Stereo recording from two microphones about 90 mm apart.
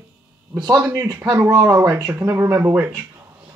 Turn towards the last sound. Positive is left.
turn(degrees=-20)  # may be behind; listen again after turning